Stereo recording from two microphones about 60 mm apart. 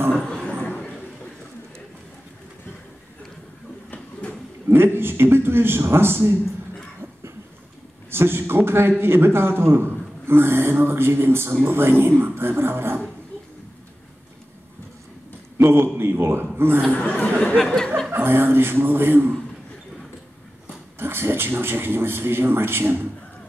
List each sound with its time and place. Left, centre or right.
0.1 s a sound: centre
3.9 s a sound: centre
4.6 s a man's voice: right
8.1 s a man's voice: right
15.5 s a man's voice: right
16.8 s speech: centre
18.1 s a man's voice: right
21.0 s a man's voice: right